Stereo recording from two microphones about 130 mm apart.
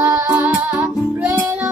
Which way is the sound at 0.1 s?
15° right (ahead or behind).